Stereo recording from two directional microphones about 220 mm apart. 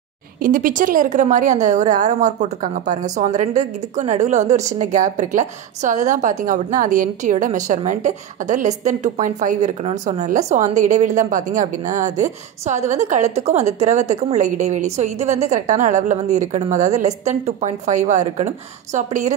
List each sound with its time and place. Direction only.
0.4 s a woman's voice: 40° right (ahead or behind)